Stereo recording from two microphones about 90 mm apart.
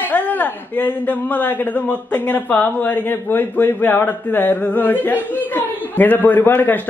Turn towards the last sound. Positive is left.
turn(degrees=25)  # may be behind; listen again after turning